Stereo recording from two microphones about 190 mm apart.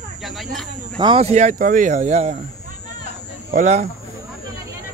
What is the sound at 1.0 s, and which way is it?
Speech, 25° right (ahead or behind).